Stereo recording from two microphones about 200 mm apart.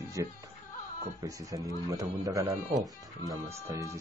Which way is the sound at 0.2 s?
15° right (ahead or behind).